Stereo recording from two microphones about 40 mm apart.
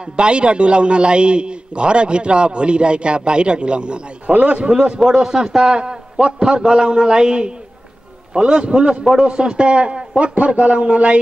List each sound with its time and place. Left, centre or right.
0.1 s a man's voice: right
4.6 s a man's voice: right